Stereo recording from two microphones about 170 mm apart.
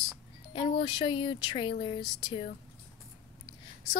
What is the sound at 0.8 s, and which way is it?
Speech, 30° left (ahead or behind).